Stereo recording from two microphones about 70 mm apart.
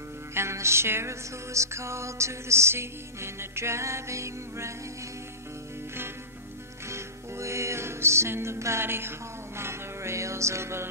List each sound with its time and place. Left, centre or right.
0.3 s music: right
6.9 s music: right